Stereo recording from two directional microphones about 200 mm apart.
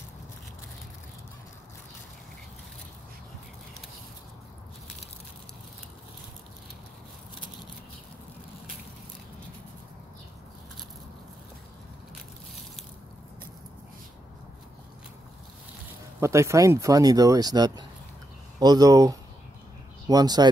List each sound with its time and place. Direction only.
16.2 s speech: 15° right (ahead or behind)